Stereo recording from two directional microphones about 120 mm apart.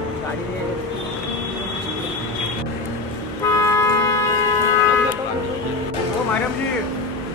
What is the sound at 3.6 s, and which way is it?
Toot, 25° left (ahead or behind).